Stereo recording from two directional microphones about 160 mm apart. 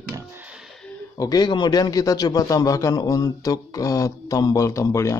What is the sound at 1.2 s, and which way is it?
A man's voice, 25° left (ahead or behind).